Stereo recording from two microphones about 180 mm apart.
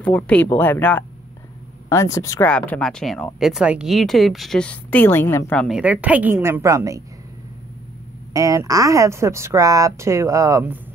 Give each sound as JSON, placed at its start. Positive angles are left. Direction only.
{"t": 0.0, "sound": "speech", "side_deg": 10}
{"t": 5.7, "sound": "speech", "side_deg": -5}
{"t": 8.3, "sound": "speech", "side_deg": -20}